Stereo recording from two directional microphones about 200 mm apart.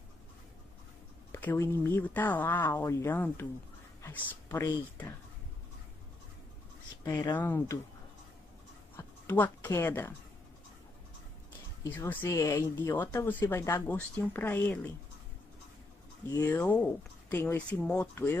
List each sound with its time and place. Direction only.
1.3 s speech: 10° left (ahead or behind)
7.3 s speech: 10° left (ahead or behind)
8.9 s a sound: 10° left (ahead or behind)
12.0 s speech: 10° left (ahead or behind)
16.3 s speech: 10° left (ahead or behind)